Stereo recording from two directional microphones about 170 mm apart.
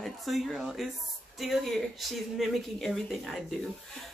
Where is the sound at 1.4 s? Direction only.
Centre (ahead or behind).